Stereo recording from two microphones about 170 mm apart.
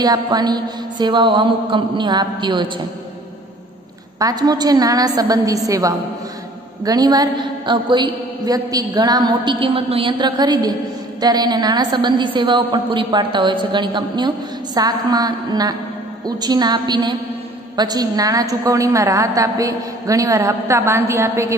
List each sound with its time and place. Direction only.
0.0 s a woman's voice: 25° right (ahead or behind)
4.2 s a woman's voice: 20° right (ahead or behind)